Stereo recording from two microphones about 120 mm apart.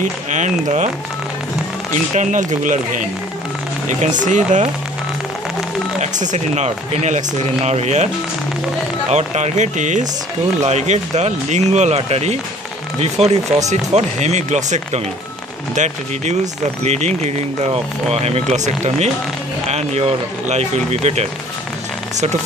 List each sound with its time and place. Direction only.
0.0 s speech: 90° right
2.1 s speech: 90° right
4.2 s speech: 90° right
5.9 s speech: 85° right
9.1 s speech: 75° right (ahead or behind); by 10.0 s 90° right
10.6 s speech: 70° right (ahead or behind)
15.7 s speech: 80° right
16.8 s speech: 70° right (ahead or behind)